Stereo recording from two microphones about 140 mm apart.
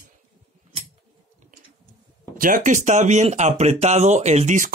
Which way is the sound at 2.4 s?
70° right (ahead or behind).